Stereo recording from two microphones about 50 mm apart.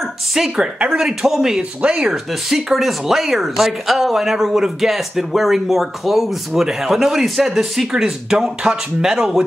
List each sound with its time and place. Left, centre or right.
0.3 s speech: centre
1.8 s speech: right
2.7 s speech: centre